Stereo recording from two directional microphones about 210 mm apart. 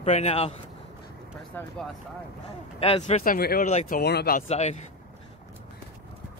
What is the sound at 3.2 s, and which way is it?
Speech, 45° left (ahead or behind).